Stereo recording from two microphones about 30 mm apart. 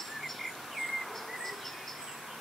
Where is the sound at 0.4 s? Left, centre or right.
Centre.